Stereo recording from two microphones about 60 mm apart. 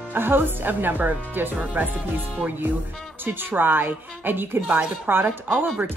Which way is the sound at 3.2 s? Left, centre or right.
Right.